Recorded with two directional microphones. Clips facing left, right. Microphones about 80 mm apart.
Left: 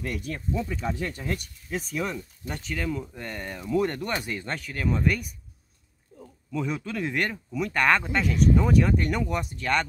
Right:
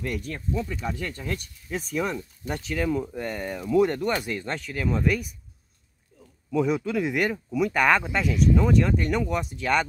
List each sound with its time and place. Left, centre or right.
0.0 s speech: centre
0.5 s speech: centre
6.5 s speech: centre